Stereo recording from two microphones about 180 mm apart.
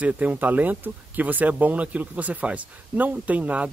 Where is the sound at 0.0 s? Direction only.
10° right (ahead or behind).